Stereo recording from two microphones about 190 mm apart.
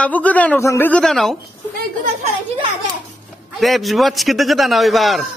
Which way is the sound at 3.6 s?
Centre (ahead or behind).